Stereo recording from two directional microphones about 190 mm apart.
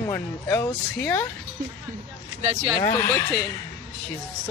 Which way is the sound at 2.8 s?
15° left (ahead or behind).